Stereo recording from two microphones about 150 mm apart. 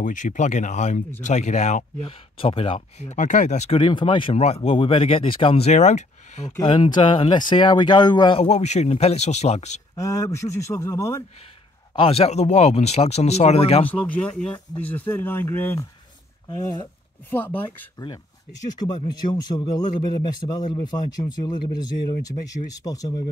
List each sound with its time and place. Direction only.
0.0 s speech: 60° left (ahead or behind)
6.6 s speech: 30° left (ahead or behind); by 9.8 s 50° left (ahead or behind)
9.9 s a man's voice: 20° left (ahead or behind)
11.9 s speech: 40° left (ahead or behind)
13.8 s speech: 10° left (ahead or behind)
16.4 s a man's voice: 30° left (ahead or behind)
17.3 s speech: 15° left (ahead or behind)
18.8 s a man's voice: 30° left (ahead or behind)